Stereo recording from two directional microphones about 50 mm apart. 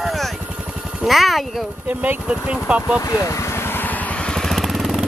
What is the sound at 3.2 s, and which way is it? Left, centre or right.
Vehicle, left.